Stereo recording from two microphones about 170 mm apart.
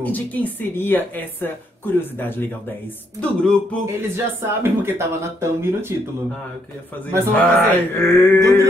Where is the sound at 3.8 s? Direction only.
15° right (ahead or behind).